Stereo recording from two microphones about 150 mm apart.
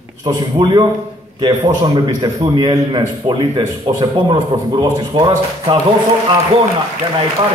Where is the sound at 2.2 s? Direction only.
30° right (ahead or behind).